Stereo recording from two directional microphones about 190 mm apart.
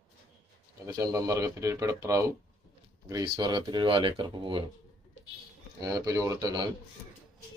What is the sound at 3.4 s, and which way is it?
Speech, 25° right (ahead or behind).